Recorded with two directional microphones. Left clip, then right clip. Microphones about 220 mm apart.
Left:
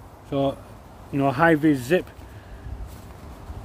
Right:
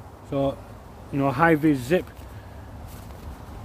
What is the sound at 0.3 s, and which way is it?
Speech, 20° left (ahead or behind).